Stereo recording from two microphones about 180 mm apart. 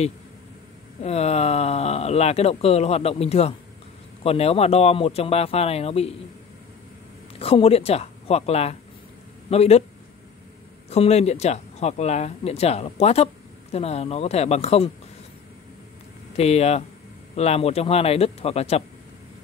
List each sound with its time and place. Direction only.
1.0 s speech: 35° left (ahead or behind)
7.3 s speech: 30° left (ahead or behind)
10.9 s speech: 35° left (ahead or behind)
16.3 s speech: 35° left (ahead or behind)